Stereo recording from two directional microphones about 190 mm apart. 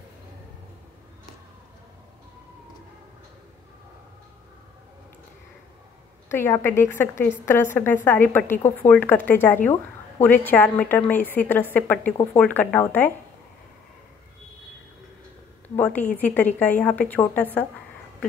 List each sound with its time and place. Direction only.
6.3 s a woman's voice: 10° left (ahead or behind)
15.7 s a woman's voice: 10° left (ahead or behind)